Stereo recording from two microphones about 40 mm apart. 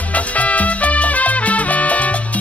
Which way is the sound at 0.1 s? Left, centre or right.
Left.